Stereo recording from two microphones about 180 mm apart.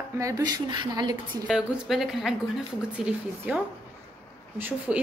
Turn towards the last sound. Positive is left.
turn(degrees=-5)  # may be behind; listen again after turning